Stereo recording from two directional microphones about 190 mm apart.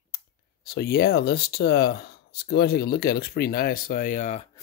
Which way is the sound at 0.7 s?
60° left (ahead or behind).